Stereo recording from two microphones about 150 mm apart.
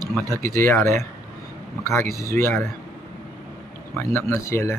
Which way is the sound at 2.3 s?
15° left (ahead or behind).